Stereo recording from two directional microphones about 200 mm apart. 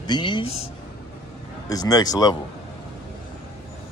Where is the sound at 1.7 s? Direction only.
20° left (ahead or behind).